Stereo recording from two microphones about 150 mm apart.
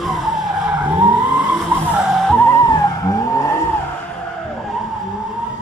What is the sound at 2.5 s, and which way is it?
Vehicle, 25° left (ahead or behind).